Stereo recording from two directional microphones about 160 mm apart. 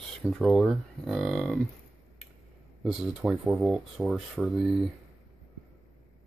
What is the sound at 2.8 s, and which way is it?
Speech, 5° right (ahead or behind).